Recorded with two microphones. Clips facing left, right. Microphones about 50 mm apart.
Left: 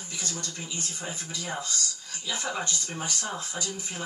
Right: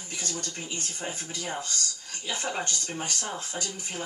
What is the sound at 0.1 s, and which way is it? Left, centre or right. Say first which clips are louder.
Speech: right 1 dB; right.